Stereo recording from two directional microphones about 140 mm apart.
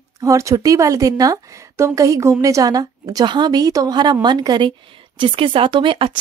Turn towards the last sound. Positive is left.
turn(degrees=-40)  # may be behind; listen again after turning